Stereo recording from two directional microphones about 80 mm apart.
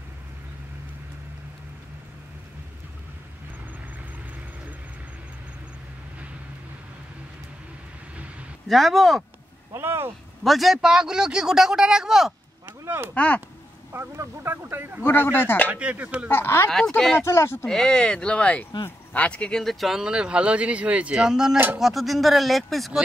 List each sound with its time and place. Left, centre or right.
8.6 s speech: centre
9.8 s speech: right
10.4 s a man's voice: centre
12.6 s a sound: right
13.1 s speech: centre
13.9 s speech: right
15.0 s speech: left
15.7 s a man's voice: centre
16.3 s speech: left
17.6 s speech: centre
19.6 s a man's voice: centre